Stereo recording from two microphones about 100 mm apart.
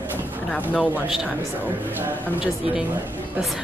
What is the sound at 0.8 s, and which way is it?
A man's voice, 15° right (ahead or behind).